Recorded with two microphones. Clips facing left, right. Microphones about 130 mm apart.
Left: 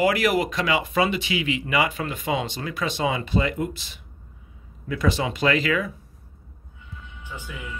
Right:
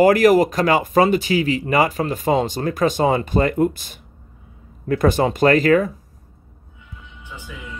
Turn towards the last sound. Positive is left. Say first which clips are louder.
# right 8 dB
turn(degrees=-45)  # may be behind; listen again after turning